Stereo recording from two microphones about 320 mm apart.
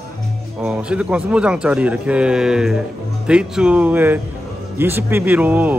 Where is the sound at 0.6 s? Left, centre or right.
Centre.